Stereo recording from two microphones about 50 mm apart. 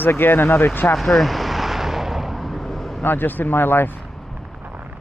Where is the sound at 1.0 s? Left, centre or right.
Centre.